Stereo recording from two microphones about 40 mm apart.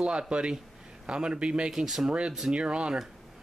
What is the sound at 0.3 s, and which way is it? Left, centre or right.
A man's voice, right.